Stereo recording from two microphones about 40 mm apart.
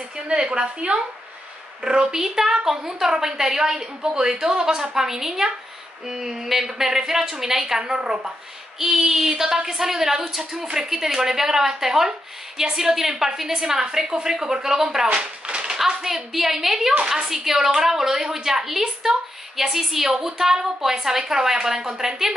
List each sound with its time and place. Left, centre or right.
0.3 s a woman's voice: right
1.8 s a woman's voice: centre
8.7 s a woman's voice: centre
15.4 s clapping: right
15.7 s a woman's voice: centre